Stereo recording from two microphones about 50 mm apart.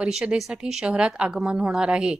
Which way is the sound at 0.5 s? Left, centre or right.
Centre.